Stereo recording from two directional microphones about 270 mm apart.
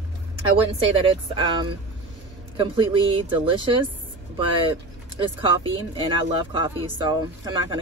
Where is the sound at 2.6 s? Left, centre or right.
Centre.